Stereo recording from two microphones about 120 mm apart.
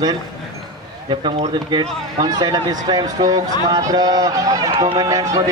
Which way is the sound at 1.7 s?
35° right (ahead or behind).